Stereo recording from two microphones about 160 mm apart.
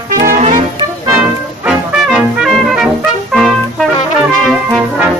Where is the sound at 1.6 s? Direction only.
5° right (ahead or behind).